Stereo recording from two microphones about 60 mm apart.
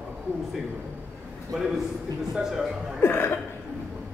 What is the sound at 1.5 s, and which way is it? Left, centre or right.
A man's voice, centre.